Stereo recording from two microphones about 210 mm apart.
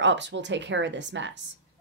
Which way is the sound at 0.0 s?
60° right (ahead or behind).